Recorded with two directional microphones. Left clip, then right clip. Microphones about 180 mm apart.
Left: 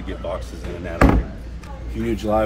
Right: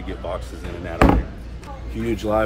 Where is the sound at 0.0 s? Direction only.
10° right (ahead or behind).